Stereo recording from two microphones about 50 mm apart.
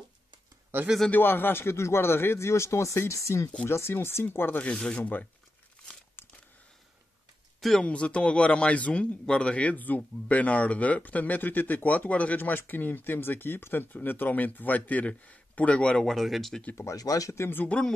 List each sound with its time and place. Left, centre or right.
1.1 s speech: left
3.6 s speech: left
4.9 s speech: left
6.2 s a sound: left
7.8 s speech: left
12.4 s speech: left
16.1 s speech: centre
16.7 s speech: left
17.7 s speech: left